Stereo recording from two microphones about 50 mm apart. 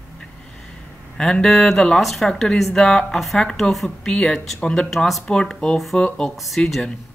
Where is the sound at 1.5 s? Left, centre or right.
Centre.